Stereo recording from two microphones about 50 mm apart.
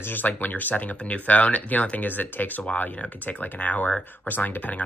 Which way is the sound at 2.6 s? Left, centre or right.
Left.